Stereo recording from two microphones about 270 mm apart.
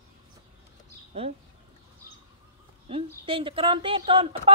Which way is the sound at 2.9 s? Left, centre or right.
Centre.